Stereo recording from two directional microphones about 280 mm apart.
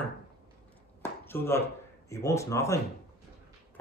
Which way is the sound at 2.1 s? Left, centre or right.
Centre.